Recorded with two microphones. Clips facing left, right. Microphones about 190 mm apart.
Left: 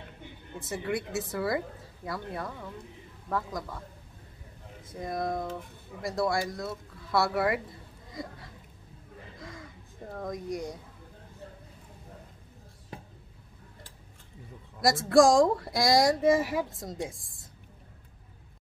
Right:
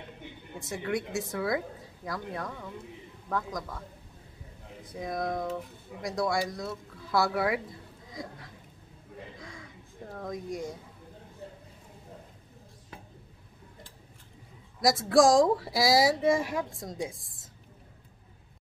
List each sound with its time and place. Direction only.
0.6 s speech: centre (ahead or behind)
4.9 s speech: centre (ahead or behind)
9.4 s a sound: centre (ahead or behind)
14.8 s speech: centre (ahead or behind)